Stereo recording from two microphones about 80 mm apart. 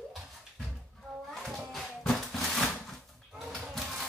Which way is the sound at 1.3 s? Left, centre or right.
Centre.